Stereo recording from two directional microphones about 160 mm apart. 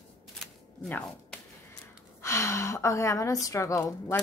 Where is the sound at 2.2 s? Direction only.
15° left (ahead or behind).